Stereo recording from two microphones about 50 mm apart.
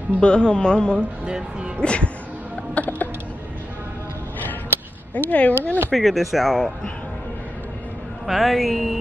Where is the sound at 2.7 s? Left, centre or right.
Left.